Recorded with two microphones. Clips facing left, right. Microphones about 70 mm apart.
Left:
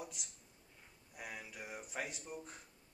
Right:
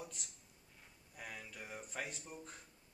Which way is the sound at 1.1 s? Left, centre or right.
Centre.